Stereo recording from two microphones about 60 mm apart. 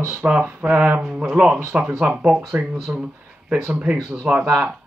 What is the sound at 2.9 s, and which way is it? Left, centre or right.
Speech, right.